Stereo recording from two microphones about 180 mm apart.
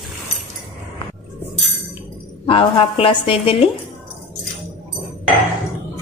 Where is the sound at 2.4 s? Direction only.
30° left (ahead or behind).